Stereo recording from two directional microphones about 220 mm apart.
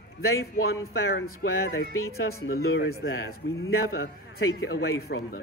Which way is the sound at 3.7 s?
70° left (ahead or behind).